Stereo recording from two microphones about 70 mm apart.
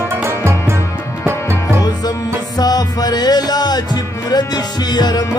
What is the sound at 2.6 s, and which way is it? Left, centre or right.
Music, left.